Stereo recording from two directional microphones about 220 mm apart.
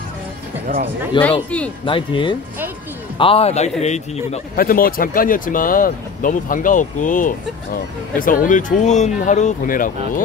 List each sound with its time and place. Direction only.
1.1 s a man's voice: 20° left (ahead or behind); by 10.2 s 40° left (ahead or behind)